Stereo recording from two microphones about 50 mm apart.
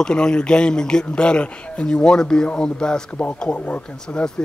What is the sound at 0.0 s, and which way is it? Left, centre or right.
Speech, centre.